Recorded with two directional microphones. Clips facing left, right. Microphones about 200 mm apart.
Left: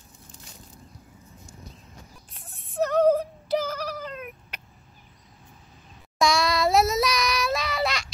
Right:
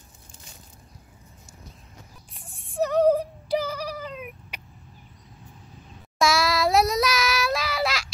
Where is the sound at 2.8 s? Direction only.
10° right (ahead or behind).